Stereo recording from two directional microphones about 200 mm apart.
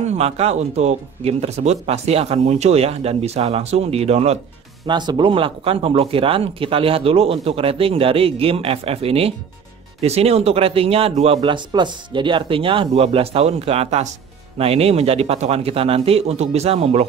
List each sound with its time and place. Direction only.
0.0 s speech: 35° right (ahead or behind)